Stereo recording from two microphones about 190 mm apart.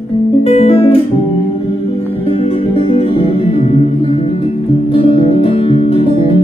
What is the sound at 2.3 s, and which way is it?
Music, 30° left (ahead or behind).